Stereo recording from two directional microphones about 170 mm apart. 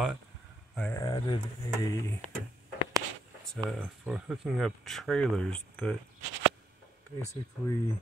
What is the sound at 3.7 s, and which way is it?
Speech, 5° right (ahead or behind).